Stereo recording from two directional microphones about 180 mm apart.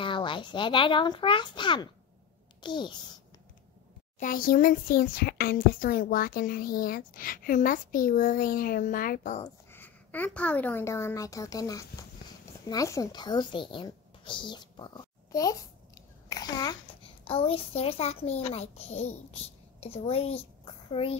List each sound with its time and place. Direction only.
0.0 s a child's voice: 30° left (ahead or behind)
4.2 s a child's voice: 50° left (ahead or behind)
9.7 s a child's voice: 10° left (ahead or behind); by 21.2 s 30° left (ahead or behind)